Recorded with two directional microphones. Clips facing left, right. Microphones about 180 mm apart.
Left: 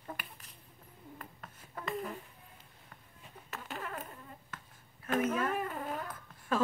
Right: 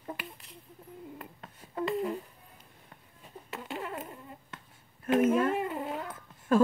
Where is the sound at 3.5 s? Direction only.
25° right (ahead or behind).